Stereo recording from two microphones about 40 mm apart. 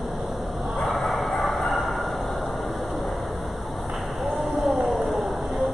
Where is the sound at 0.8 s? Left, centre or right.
Centre.